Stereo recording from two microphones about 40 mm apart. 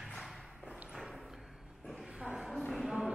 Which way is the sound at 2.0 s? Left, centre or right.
Centre.